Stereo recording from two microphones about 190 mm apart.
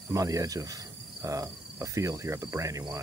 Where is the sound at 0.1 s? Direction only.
20° right (ahead or behind).